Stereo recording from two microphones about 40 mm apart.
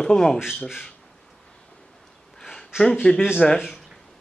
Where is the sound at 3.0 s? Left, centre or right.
Left.